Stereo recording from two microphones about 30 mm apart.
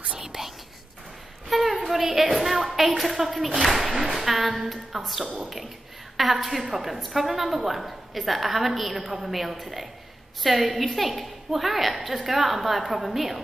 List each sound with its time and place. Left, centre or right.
0.3 s whispering: right
1.5 s a sound: centre
1.9 s a woman's voice: centre